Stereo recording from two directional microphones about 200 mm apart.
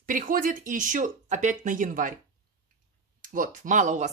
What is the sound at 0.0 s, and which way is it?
Speech, 45° right (ahead or behind).